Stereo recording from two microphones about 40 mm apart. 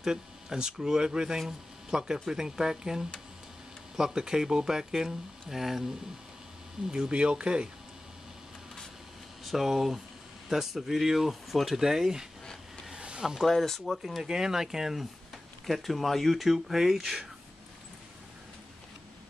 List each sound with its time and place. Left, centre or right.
0.0 s speech: centre
6.9 s speech: right
9.4 s speech: centre
13.5 s speech: centre
14.2 s speech: centre
15.3 s speech: centre